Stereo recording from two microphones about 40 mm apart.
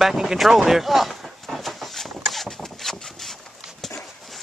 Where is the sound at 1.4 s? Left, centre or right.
Centre.